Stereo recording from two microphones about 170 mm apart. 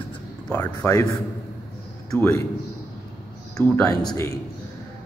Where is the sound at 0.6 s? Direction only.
20° left (ahead or behind).